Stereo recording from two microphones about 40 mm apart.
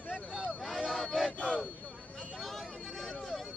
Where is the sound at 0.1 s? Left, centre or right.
Centre.